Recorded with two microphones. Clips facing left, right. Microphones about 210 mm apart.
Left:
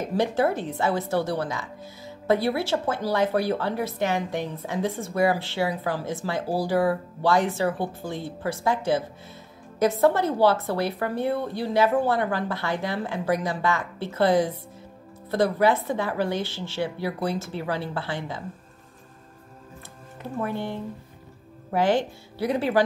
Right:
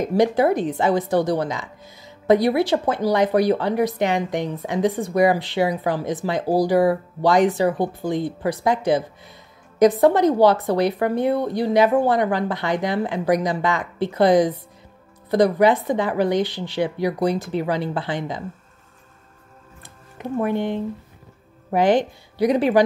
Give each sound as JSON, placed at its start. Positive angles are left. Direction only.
{"t": 0.0, "sound": "speech", "side_deg": -15}
{"t": 20.2, "sound": "speech", "side_deg": -20}